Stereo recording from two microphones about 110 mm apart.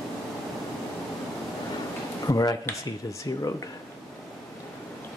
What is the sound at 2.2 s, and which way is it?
Speech, 35° left (ahead or behind).